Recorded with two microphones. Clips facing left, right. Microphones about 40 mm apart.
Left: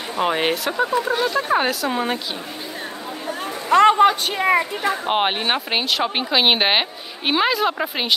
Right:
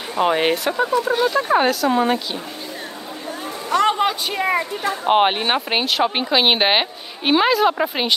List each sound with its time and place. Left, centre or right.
0.1 s speech: centre
3.7 s a woman's voice: left
5.0 s speech: centre